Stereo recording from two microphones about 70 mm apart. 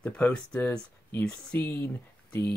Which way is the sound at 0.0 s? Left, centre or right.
Centre.